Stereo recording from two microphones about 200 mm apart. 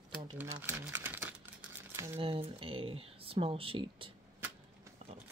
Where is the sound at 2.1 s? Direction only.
25° right (ahead or behind).